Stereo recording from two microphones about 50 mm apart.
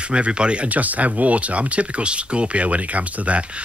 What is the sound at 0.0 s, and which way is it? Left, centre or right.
Speech, right.